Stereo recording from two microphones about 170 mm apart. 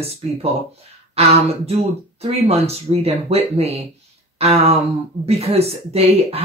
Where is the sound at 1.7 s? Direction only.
35° right (ahead or behind).